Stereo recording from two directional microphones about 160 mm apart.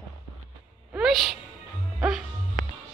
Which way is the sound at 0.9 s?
Centre (ahead or behind).